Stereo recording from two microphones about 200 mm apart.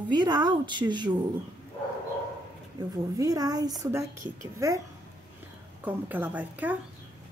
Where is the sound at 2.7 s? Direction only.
20° right (ahead or behind).